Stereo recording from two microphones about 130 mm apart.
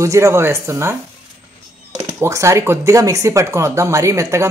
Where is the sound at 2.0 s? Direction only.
20° right (ahead or behind).